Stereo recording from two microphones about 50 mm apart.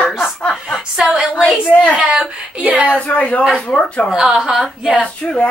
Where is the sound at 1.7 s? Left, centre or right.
Left.